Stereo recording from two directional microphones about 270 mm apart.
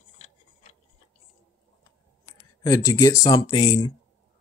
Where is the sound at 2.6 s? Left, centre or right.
Centre.